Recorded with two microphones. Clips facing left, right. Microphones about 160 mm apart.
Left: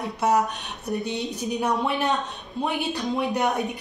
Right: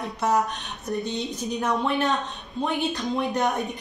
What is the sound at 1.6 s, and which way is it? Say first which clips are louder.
Speech: right 1 dB; 15° left (ahead or behind).